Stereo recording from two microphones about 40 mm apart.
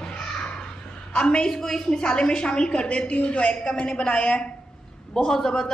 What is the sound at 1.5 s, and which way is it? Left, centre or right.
A woman's voice, centre.